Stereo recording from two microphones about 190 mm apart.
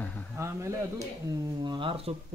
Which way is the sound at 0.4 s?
15° right (ahead or behind).